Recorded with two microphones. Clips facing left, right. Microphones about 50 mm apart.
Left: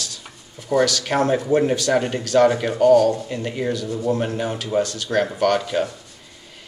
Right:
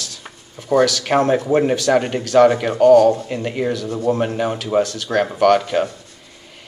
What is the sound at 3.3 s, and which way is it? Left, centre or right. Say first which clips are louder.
Speech: right 3 dB; right.